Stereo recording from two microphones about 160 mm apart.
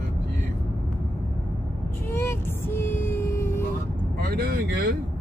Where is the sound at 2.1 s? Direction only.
15° left (ahead or behind).